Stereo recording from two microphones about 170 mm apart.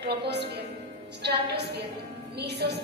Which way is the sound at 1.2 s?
75° right (ahead or behind).